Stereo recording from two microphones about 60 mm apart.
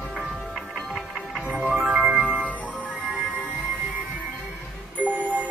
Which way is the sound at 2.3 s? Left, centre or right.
Right.